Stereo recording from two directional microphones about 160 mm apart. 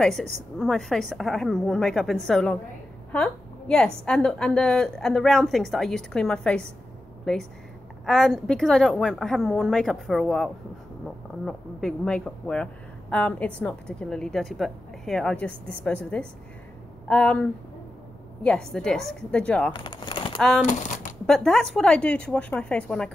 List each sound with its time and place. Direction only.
0.0 s a woman's voice: centre (ahead or behind)
8.0 s a woman's voice: centre (ahead or behind)
19.7 s speech: 30° left (ahead or behind)
20.3 s speech: centre (ahead or behind)
20.6 s speech: 50° left (ahead or behind)
21.3 s a woman's voice: centre (ahead or behind)